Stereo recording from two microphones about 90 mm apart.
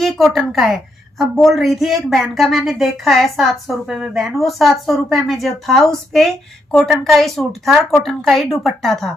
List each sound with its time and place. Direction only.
0.0 s a woman's voice: 5° left (ahead or behind)